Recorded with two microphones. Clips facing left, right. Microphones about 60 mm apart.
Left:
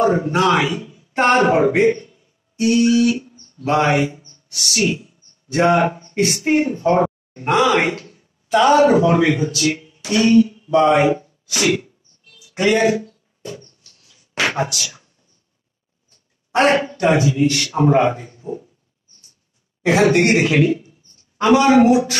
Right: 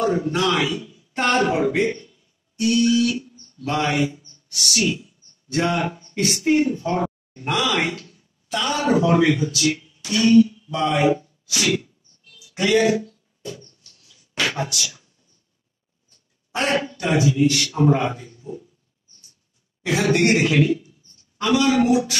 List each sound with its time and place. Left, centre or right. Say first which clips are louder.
0.0 s speech: left 5 dB; left
3.6 s mantra: left 5 dB; left
4.7 s speech: left 4 dB; left
12.3 s a sound: left 3 dB; left
16.7 s speech: left 5 dB; left
20.2 s speech: left 3 dB; left